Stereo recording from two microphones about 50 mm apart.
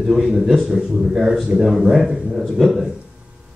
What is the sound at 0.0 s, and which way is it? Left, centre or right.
Speech, centre.